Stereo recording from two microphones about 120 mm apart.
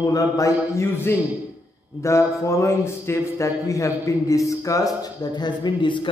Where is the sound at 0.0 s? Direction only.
30° left (ahead or behind).